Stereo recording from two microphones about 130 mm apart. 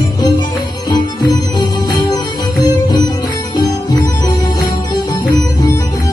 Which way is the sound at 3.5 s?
30° left (ahead or behind).